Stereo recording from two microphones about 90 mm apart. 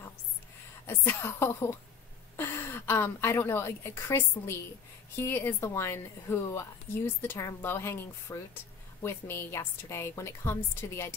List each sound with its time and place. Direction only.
0.8 s a woman's voice: 30° left (ahead or behind)